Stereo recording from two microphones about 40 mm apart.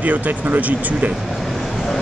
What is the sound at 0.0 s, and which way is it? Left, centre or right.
Speech, right.